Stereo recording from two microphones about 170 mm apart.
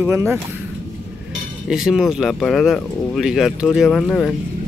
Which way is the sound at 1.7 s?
5° right (ahead or behind).